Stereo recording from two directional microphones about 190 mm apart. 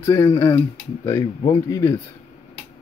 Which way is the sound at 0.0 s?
15° left (ahead or behind).